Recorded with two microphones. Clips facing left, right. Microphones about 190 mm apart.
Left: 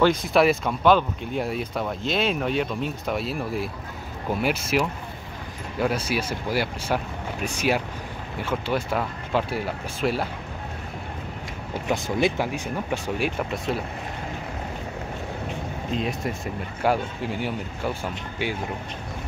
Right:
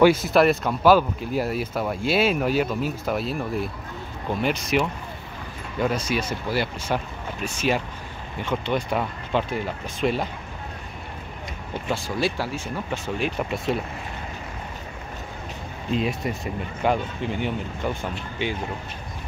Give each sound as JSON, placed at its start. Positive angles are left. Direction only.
{"t": 0.0, "sound": "speech", "side_deg": -5}
{"t": 11.9, "sound": "speech", "side_deg": 20}
{"t": 13.4, "sound": "speech", "side_deg": 0}
{"t": 16.0, "sound": "speech", "side_deg": 0}